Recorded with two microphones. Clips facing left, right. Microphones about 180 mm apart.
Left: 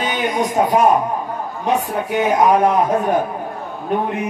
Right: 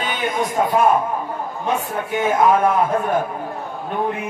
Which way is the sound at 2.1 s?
15° left (ahead or behind).